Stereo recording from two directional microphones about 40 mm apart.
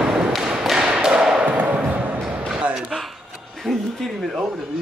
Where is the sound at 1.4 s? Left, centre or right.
Right.